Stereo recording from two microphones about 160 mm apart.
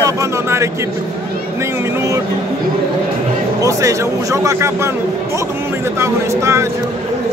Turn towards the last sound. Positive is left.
turn(degrees=-15)  # may be behind; listen again after turning